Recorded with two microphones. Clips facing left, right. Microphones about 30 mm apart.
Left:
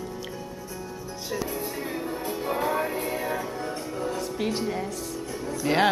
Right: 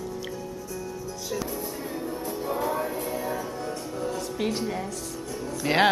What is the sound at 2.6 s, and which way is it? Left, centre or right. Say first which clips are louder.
Music: left 2 dB; left.